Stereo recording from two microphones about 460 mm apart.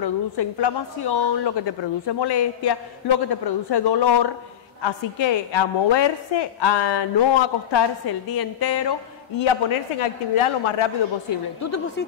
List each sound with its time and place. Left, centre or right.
0.0 s a woman's voice: left
4.8 s a woman's voice: left
9.4 s a man's voice: left
11.6 s a woman's voice: left